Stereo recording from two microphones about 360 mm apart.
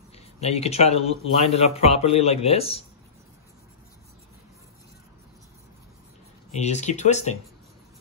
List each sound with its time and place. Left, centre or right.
0.4 s a man's voice: centre
6.5 s speech: centre